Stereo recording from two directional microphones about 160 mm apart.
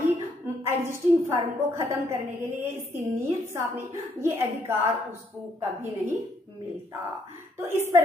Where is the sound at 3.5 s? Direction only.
15° right (ahead or behind).